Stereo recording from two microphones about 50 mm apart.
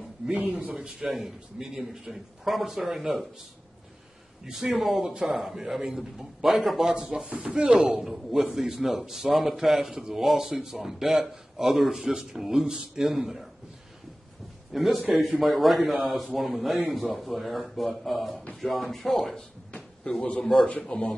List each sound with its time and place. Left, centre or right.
0.3 s speech: right
0.7 s speech: centre
1.1 s a man's voice: centre
4.5 s a man's voice: centre
7.2 s speech: right
7.8 s a man's voice: centre
14.7 s a man's voice: centre
20.1 s a man's voice: left